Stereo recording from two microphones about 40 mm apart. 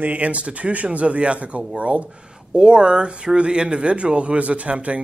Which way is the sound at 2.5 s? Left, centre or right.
Right.